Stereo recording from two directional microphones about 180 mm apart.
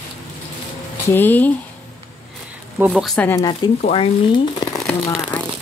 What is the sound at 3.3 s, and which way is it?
Speech, 20° left (ahead or behind).